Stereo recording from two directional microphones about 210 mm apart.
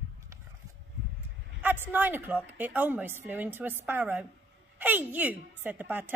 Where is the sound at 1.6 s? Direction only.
10° right (ahead or behind).